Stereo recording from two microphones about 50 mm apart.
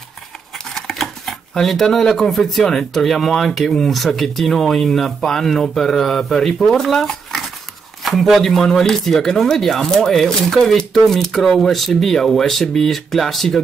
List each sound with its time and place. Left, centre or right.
0.7 s speech: centre